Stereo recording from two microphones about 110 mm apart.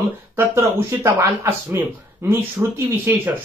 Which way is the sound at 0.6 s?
25° right (ahead or behind).